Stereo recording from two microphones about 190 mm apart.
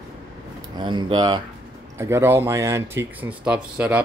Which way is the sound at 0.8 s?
25° right (ahead or behind).